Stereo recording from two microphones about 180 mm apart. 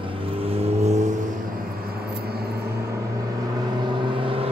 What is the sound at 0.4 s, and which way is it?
Vehicle, 35° right (ahead or behind).